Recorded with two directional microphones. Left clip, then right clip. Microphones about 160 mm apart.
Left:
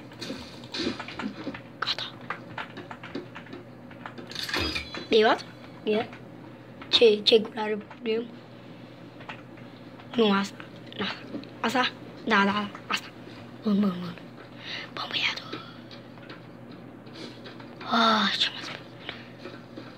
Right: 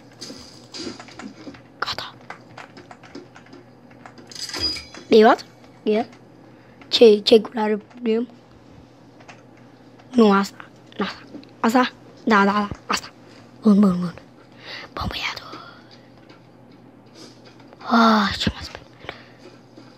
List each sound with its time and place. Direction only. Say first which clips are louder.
1.8 s biting: right 3 dB; 50° right (ahead or behind)
5.1 s a sound: right 8 dB; 50° right (ahead or behind)
6.9 s a woman's voice: right 6 dB; 55° right (ahead or behind)
10.1 s a woman's voice: right 7 dB; 55° right (ahead or behind)
14.6 s whispering: right 4 dB; 50° right (ahead or behind)
17.8 s a sound: right 6 dB; 55° right (ahead or behind)